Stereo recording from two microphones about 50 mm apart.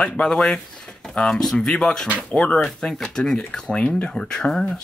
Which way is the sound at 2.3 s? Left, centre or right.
Left.